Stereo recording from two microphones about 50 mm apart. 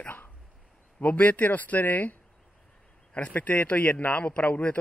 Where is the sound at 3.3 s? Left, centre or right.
Left.